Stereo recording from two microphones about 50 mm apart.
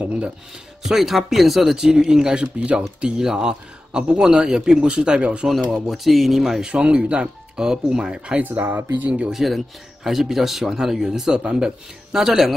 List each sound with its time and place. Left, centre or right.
0.0 s a sound: right
0.8 s speech: centre
5.7 s speech: centre
6.6 s speech: centre
8.4 s speech: right
8.9 s speech: right
9.3 s speech: centre